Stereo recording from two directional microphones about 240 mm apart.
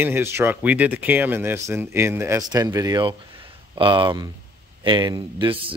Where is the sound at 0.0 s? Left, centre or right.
Centre.